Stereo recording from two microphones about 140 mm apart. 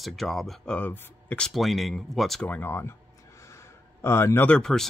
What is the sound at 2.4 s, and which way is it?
Speech, 15° left (ahead or behind).